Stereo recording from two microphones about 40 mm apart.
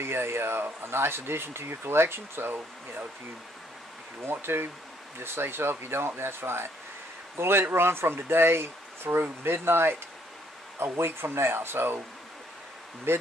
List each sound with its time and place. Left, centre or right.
0.0 s speech: right
4.3 s speech: right
5.2 s speech: right
10.8 s speech: right
13.1 s speech: right